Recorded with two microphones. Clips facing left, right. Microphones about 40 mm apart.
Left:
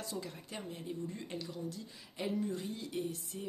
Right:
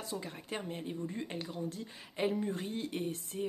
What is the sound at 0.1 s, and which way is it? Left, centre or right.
Speech, centre.